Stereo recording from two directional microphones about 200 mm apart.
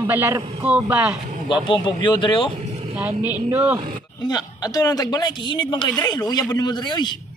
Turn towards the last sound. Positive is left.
turn(degrees=20)  # may be behind; listen again after turning